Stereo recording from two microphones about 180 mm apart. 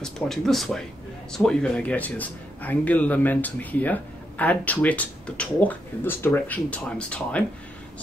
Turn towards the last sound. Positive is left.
turn(degrees=5)  # may be behind; listen again after turning